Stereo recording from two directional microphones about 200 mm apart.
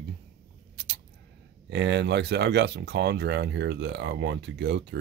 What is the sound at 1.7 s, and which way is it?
Speech, 60° right (ahead or behind).